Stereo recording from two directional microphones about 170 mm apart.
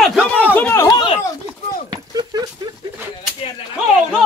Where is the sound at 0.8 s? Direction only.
30° left (ahead or behind).